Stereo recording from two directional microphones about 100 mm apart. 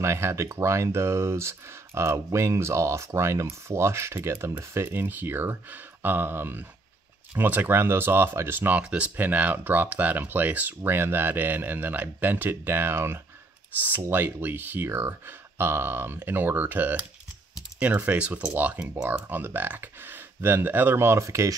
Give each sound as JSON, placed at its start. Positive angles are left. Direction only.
{"t": 0.0, "sound": "speech", "side_deg": -25}